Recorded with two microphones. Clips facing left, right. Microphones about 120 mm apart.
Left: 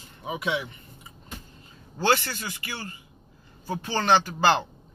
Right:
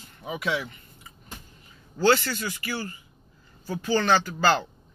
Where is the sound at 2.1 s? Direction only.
25° left (ahead or behind).